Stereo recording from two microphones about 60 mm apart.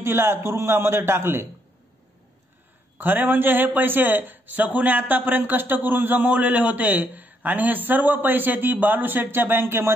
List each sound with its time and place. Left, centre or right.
0.0 s a man's voice: right
3.0 s a man's voice: right